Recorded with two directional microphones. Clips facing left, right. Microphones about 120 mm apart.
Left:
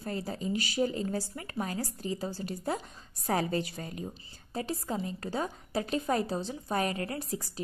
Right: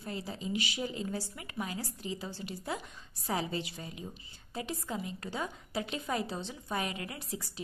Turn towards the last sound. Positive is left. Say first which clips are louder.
# left 6 dB
turn(degrees=40)  # may be behind; listen again after turning